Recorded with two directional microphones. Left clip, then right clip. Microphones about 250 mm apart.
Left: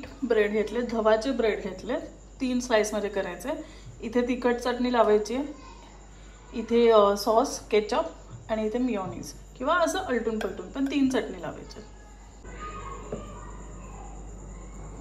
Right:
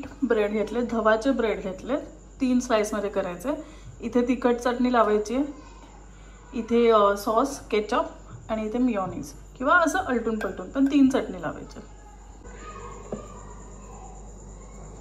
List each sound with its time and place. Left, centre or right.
0.0 s a woman's voice: centre
6.5 s a woman's voice: centre